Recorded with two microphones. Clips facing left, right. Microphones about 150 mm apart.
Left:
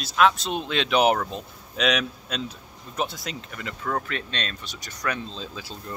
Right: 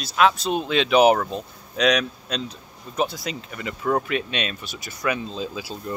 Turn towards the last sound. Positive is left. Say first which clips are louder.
# right 6 dB
turn(degrees=-10)  # may be behind; listen again after turning